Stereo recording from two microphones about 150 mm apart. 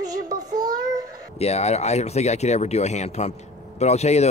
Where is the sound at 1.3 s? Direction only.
45° left (ahead or behind).